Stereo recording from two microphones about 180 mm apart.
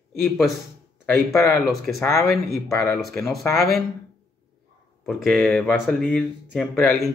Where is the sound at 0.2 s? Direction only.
Centre (ahead or behind).